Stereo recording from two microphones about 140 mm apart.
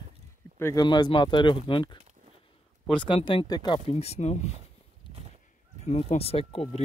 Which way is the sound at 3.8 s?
50° left (ahead or behind).